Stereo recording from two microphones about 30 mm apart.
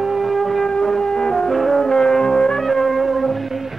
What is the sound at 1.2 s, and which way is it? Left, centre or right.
Music, centre.